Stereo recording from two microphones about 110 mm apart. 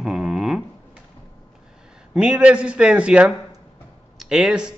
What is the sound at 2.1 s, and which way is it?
Speech, 10° right (ahead or behind).